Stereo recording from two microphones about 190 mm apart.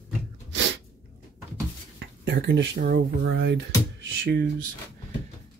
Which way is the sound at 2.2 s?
70° right (ahead or behind).